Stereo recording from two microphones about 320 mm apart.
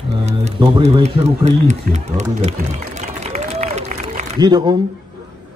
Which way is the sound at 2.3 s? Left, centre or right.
Right.